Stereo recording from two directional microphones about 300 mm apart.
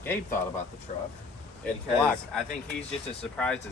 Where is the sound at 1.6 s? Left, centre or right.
Centre.